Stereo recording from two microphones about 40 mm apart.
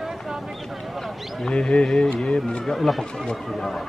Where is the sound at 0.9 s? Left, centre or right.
Centre.